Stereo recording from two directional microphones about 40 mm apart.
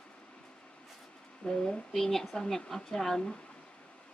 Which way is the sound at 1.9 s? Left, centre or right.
Centre.